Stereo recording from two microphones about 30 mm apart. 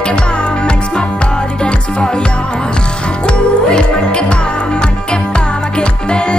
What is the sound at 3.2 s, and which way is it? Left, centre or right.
Music, left.